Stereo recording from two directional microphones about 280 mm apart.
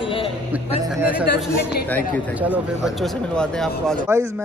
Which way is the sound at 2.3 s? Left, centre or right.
Centre.